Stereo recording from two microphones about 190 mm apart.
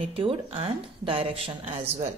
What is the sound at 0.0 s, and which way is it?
A woman's voice, 30° right (ahead or behind).